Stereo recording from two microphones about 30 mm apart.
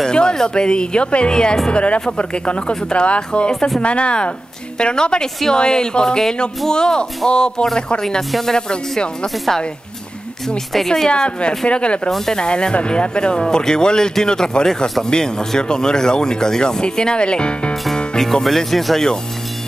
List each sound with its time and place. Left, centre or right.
0.1 s speech: left
1.7 s speech: left
11.1 s speech: left
18.2 s speech: centre